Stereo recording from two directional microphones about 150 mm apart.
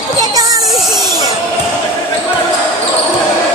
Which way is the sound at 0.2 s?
25° right (ahead or behind).